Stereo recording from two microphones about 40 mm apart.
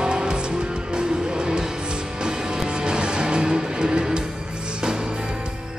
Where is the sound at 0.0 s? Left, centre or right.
Right.